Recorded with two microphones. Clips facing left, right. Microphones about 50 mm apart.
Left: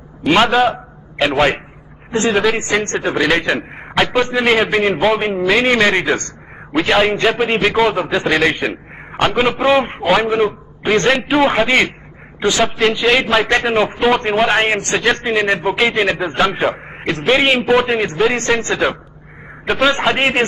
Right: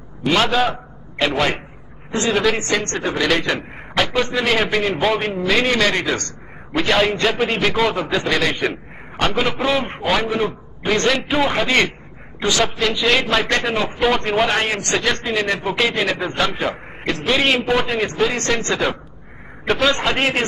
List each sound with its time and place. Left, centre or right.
0.3 s a man's voice: left
5.0 s a man's voice: centre
8.2 s a man's voice: left; by 10.2 s centre
10.2 s a man's voice: left